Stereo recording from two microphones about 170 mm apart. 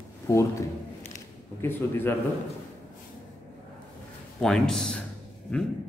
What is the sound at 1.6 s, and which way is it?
Speech, 15° left (ahead or behind).